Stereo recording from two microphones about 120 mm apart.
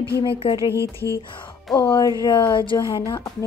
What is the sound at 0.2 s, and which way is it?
Speech, 45° left (ahead or behind).